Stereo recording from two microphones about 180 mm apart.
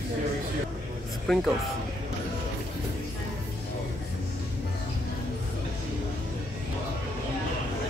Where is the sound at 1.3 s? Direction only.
Centre (ahead or behind).